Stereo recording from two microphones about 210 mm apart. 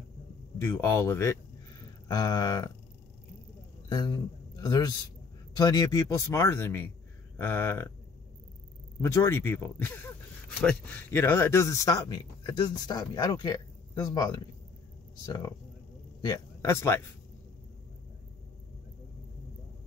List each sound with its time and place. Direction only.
0.6 s speech: 10° left (ahead or behind)
3.9 s a man's voice: 20° left (ahead or behind)
9.0 s speech: 15° left (ahead or behind)
16.2 s speech: 20° left (ahead or behind)